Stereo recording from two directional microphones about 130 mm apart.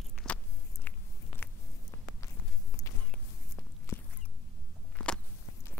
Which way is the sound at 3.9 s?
20° left (ahead or behind).